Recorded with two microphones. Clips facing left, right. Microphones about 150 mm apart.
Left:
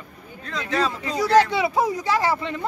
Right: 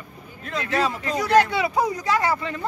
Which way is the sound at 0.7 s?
10° right (ahead or behind).